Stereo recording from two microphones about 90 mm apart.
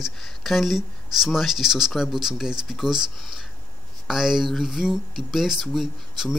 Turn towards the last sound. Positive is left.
turn(degrees=-5)  # may be behind; listen again after turning